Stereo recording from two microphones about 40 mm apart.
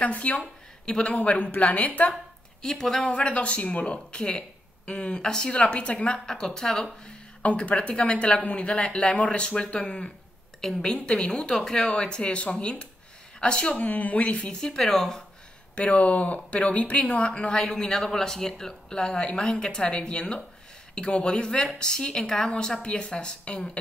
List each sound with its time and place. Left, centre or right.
0.0 s speech: left
0.8 s speech: left
1.1 s speech: left
2.6 s speech: centre
3.0 s speech: left
7.6 s speech: left
13.8 s speech: left
14.5 s speech: centre
15.7 s speech: left
17.3 s speech: left